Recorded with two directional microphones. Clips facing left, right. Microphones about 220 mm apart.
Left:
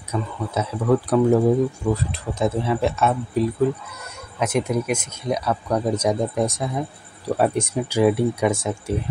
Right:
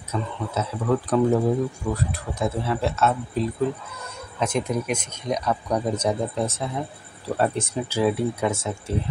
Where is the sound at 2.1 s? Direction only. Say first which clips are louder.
Left 4 dB; 20° left (ahead or behind).